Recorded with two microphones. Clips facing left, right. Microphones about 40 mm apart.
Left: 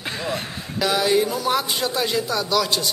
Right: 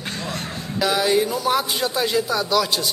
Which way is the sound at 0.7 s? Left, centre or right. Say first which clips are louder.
Even; centre.